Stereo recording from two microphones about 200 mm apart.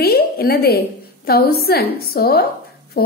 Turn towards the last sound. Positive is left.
turn(degrees=50)  # may be behind; listen again after turning